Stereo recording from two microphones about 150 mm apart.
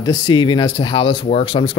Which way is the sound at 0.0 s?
30° left (ahead or behind).